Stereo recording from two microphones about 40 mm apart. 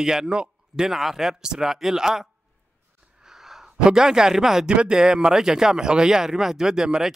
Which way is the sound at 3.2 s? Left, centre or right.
Centre.